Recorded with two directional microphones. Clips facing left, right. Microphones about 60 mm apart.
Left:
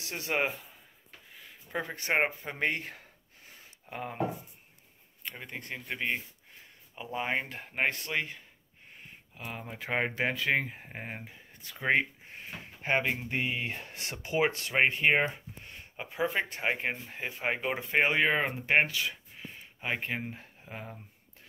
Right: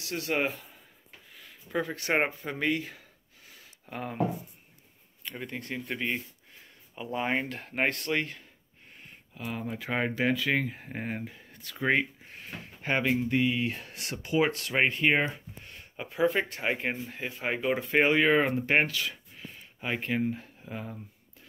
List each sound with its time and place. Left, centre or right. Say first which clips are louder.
0.0 s speech: right 4 dB; left
1.3 s a sound: right 4 dB; left
2.2 s speech: right 1 dB; centre
2.6 s speech: right 2 dB; left
3.9 s speech: right 2 dB; centre
5.5 s speech: right 3 dB; centre
7.4 s speech: right 2 dB; centre
8.9 s a sound: right 2 dB; centre
9.8 s speech: even; left
10.8 s speech: right 6 dB; centre
17.1 s speech: even; left